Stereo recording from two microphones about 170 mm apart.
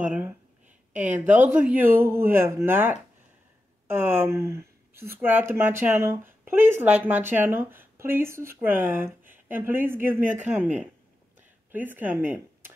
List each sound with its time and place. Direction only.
0.0 s speech: 10° right (ahead or behind)
11.7 s speech: 10° right (ahead or behind)